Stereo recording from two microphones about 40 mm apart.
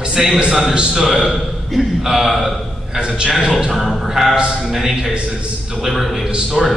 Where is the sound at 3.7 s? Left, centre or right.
Centre.